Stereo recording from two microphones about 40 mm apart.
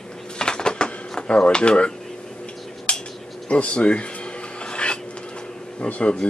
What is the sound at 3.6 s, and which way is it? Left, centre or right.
Speech, left.